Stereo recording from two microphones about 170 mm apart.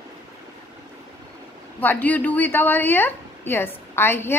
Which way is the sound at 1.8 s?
10° left (ahead or behind).